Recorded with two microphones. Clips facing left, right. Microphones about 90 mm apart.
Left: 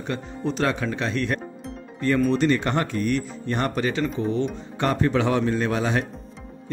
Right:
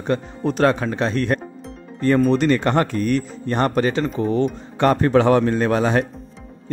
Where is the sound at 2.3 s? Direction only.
55° right (ahead or behind).